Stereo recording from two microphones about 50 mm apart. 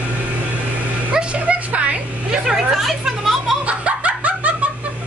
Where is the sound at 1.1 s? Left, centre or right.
Right.